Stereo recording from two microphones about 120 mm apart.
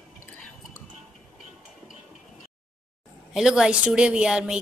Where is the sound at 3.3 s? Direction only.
5° right (ahead or behind).